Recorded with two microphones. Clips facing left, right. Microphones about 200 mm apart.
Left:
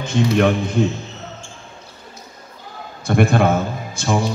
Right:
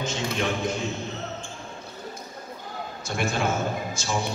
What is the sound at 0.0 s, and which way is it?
Speech, 55° left (ahead or behind).